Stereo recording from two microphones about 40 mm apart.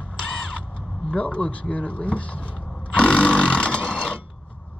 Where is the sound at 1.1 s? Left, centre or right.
Left.